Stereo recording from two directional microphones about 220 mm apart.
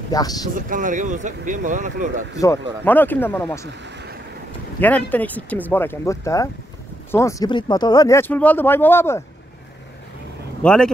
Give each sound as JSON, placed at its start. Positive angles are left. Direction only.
{"t": 0.1, "sound": "speech", "side_deg": 15}
{"t": 0.5, "sound": "speech", "side_deg": -40}
{"t": 2.3, "sound": "speech", "side_deg": 15}
{"t": 3.6, "sound": "speech", "side_deg": -50}
{"t": 4.7, "sound": "speech", "side_deg": 5}
{"t": 10.6, "sound": "speech", "side_deg": 5}